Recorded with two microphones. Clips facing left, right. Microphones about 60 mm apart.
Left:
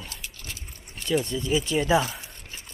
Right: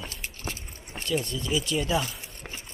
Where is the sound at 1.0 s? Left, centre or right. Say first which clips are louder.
Left 4 dB; left.